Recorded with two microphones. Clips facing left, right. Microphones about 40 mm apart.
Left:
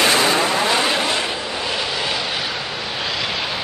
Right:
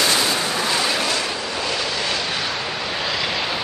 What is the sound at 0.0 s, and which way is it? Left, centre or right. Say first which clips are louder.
Vehicle: left 4 dB; left.